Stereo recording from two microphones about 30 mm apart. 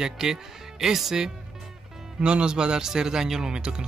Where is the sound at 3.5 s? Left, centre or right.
Right.